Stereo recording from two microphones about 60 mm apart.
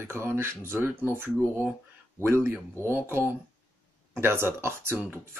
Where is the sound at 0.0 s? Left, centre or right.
Right.